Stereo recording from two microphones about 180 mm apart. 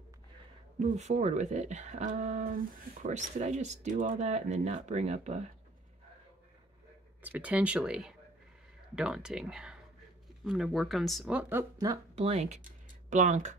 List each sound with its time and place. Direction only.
0.7 s speech: 40° right (ahead or behind)
7.2 s speech: 10° right (ahead or behind)
12.2 s speech: 35° right (ahead or behind)